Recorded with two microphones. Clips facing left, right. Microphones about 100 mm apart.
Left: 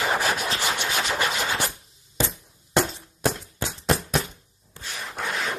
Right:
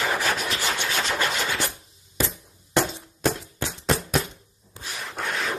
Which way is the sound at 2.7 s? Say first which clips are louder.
Even; 15° left (ahead or behind).